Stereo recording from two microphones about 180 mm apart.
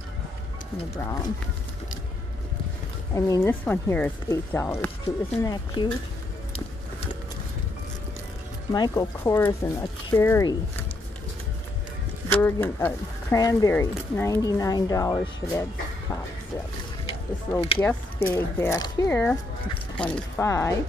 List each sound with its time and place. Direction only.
0.9 s speech: 15° left (ahead or behind)
3.2 s speech: 15° left (ahead or behind)
8.7 s speech: 25° left (ahead or behind)
9.2 s speech: 15° left (ahead or behind)
12.3 s speech: 10° left (ahead or behind)
17.1 s speech: 35° left (ahead or behind)
17.8 s speech: 10° left (ahead or behind)